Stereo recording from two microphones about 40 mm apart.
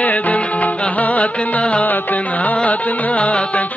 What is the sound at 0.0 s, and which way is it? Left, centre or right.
Music, left.